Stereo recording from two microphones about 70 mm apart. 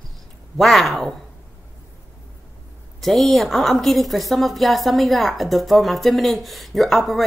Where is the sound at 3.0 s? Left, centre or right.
Centre.